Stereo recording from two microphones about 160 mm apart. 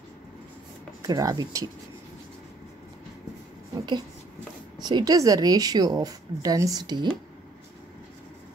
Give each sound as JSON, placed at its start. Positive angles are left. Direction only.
{"t": 1.0, "sound": "speech", "side_deg": -25}
{"t": 4.7, "sound": "speech", "side_deg": -25}